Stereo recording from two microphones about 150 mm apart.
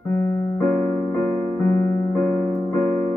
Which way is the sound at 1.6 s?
15° left (ahead or behind).